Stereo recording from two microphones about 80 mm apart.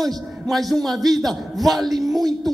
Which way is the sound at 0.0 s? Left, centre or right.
Centre.